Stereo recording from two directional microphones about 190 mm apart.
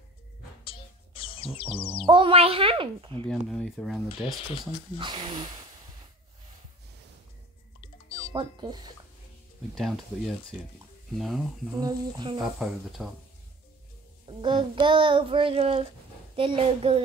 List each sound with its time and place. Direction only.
0.7 s music: 30° left (ahead or behind)
2.0 s child singing: 30° right (ahead or behind)
3.3 s speech: centre (ahead or behind)
4.9 s child singing: 25° right (ahead or behind)
8.3 s child singing: 20° right (ahead or behind)
9.8 s speech: centre (ahead or behind)
11.8 s child singing: 25° right (ahead or behind)
12.4 s speech: centre (ahead or behind)
14.2 s child singing: 25° right (ahead or behind)